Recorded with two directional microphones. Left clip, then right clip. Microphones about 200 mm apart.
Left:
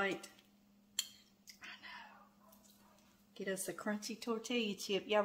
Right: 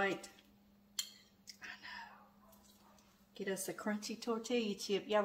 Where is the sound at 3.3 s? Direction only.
20° left (ahead or behind).